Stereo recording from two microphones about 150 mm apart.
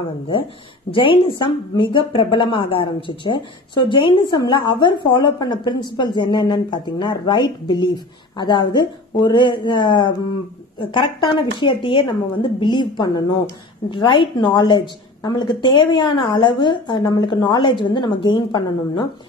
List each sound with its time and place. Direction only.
0.9 s a woman's voice: 35° left (ahead or behind)